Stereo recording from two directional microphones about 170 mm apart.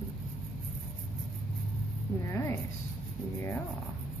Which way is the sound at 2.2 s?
15° left (ahead or behind).